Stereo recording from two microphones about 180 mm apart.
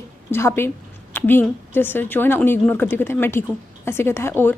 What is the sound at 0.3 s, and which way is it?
A woman's voice, 15° left (ahead or behind).